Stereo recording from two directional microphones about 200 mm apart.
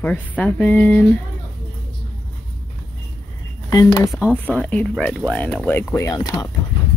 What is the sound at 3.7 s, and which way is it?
Speech, 15° left (ahead or behind).